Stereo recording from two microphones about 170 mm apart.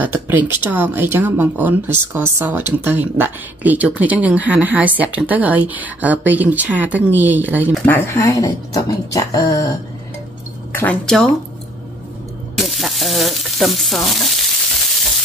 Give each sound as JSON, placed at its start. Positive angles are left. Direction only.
{"t": 0.0, "sound": "speech", "side_deg": -10}
{"t": 7.7, "sound": "speech", "side_deg": 10}
{"t": 10.7, "sound": "speech", "side_deg": 10}
{"t": 12.5, "sound": "frying", "side_deg": 0}